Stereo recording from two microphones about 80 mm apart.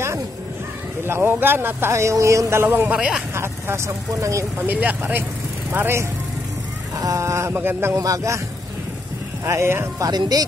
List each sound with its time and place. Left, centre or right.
1.0 s a man's voice: right
2.6 s speech: right
3.0 s speech: centre
3.3 s a man's voice: right
4.6 s speech: right
7.0 s a man's voice: right
7.9 s a man's voice: right
9.4 s a man's voice: right
9.9 s speech: right